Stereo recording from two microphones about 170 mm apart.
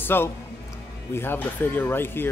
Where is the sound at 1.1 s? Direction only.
15° left (ahead or behind).